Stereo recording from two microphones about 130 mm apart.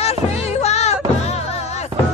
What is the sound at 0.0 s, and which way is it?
Music, 50° left (ahead or behind).